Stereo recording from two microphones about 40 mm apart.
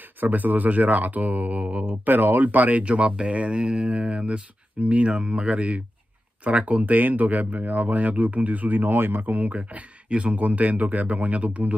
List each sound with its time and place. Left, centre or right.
0.2 s speech: right
1.9 s speech: right
2.8 s speech: right
9.3 s speech: right